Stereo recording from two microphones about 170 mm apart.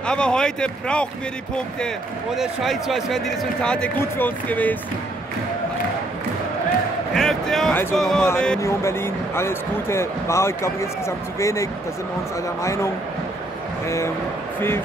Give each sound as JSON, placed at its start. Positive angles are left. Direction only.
{"t": 0.0, "sound": "speech", "side_deg": 5}
{"t": 2.3, "sound": "speech", "side_deg": 0}
{"t": 7.2, "sound": "a sound", "side_deg": 5}
{"t": 7.9, "sound": "speech", "side_deg": 0}
{"t": 8.5, "sound": "speech", "side_deg": 15}
{"t": 13.8, "sound": "speech", "side_deg": 15}